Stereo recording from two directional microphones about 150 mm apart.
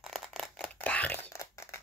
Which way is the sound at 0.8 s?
10° left (ahead or behind).